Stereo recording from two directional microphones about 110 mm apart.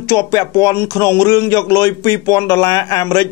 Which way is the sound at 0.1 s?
30° left (ahead or behind).